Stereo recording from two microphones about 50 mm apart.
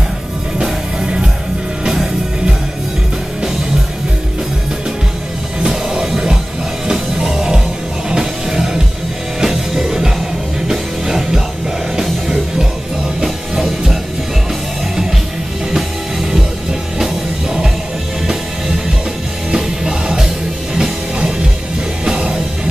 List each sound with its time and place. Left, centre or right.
0.6 s music: centre
5.7 s music: centre
15.7 s music: centre